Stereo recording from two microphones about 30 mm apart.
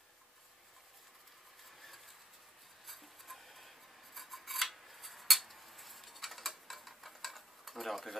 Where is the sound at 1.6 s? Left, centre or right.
Centre.